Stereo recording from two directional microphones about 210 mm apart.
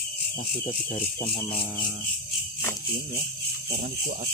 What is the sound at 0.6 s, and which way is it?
Speech, 30° left (ahead or behind).